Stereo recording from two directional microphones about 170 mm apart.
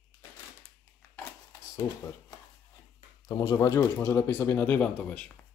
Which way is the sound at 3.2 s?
20° left (ahead or behind).